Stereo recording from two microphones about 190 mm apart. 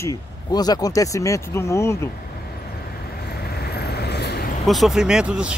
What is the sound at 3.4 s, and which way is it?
Vehicle, 55° left (ahead or behind).